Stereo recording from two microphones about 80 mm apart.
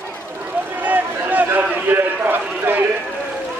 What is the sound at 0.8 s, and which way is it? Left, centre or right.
Run, right.